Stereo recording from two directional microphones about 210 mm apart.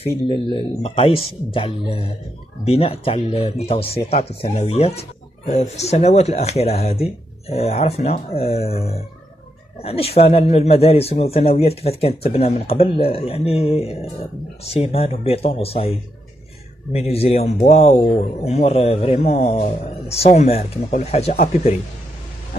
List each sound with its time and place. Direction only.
0.5 s speech: 25° left (ahead or behind)
17.1 s speech: 30° left (ahead or behind)